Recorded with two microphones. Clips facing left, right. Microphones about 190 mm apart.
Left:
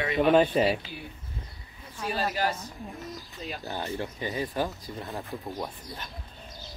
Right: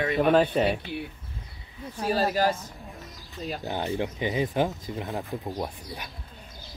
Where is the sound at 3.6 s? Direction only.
15° right (ahead or behind).